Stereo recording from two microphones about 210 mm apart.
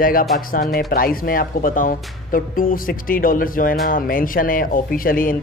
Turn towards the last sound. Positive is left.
turn(degrees=40)  # may be behind; listen again after turning